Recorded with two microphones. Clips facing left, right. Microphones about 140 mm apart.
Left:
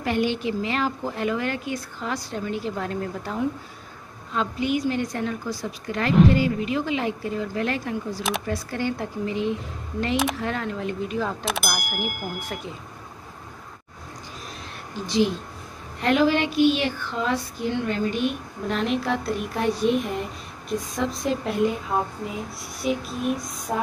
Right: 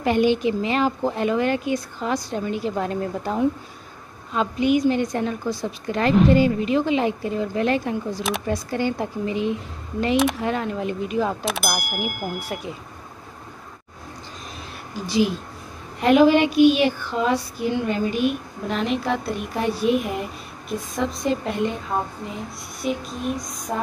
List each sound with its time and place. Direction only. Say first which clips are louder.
0.0 s a woman's voice: right 5 dB; 20° right (ahead or behind)
11.4 s speech: right 2 dB; centre (ahead or behind)
15.0 s speech: right 1 dB; 10° right (ahead or behind)